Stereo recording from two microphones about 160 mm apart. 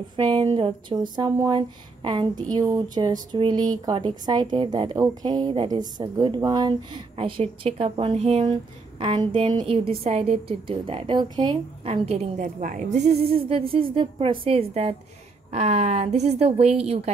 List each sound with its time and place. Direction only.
0.1 s a woman's voice: 30° right (ahead or behind)
12.4 s a woman's voice: 55° right (ahead or behind); by 17.1 s 40° right (ahead or behind)